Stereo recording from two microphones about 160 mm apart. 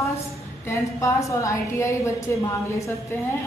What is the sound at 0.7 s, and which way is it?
A woman's voice, 20° left (ahead or behind).